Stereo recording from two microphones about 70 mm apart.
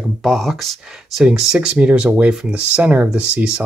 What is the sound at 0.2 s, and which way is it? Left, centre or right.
Speech, centre.